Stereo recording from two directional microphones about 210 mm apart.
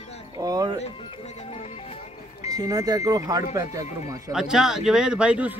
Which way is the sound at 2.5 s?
15° right (ahead or behind).